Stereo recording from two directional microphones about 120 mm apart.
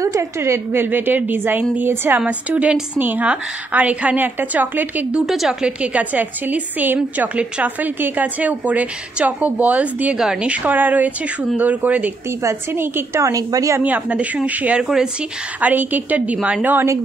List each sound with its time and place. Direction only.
0.0 s a woman's voice: 25° right (ahead or behind)
5.2 s a woman's voice: centre (ahead or behind); by 13.8 s 25° right (ahead or behind)
13.8 s a woman's voice: 10° right (ahead or behind)
16.3 s a woman's voice: 5° right (ahead or behind)
16.6 s a woman's voice: 20° right (ahead or behind)